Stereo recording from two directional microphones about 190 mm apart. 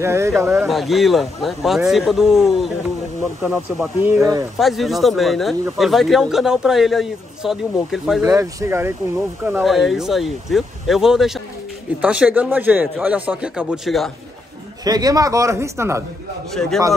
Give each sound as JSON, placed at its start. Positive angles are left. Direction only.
{"t": 0.0, "sound": "speech", "side_deg": -15}
{"t": 0.7, "sound": "speech", "side_deg": 0}
{"t": 4.1, "sound": "speech", "side_deg": -15}
{"t": 4.6, "sound": "speech", "side_deg": 0}
{"t": 8.2, "sound": "speech", "side_deg": -15}
{"t": 14.9, "sound": "speech", "side_deg": -20}